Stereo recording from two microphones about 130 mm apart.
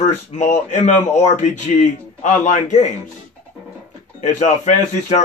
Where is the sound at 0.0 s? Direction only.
65° left (ahead or behind).